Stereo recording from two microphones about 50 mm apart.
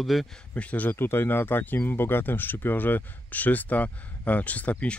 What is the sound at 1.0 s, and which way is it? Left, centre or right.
Speech, left.